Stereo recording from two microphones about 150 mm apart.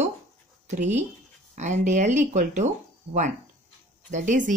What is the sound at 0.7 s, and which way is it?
Speech, 50° right (ahead or behind).